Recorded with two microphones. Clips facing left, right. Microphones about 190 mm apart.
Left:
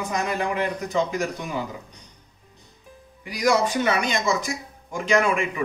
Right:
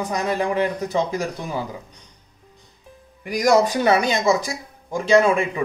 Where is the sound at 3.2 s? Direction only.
45° right (ahead or behind); by 5.6 s 30° right (ahead or behind).